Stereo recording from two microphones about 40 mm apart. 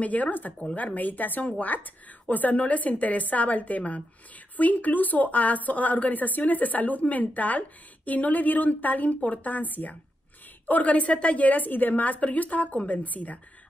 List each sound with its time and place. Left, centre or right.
0.0 s a woman's voice: left